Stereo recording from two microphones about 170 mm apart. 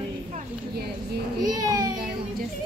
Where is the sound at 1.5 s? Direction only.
20° right (ahead or behind).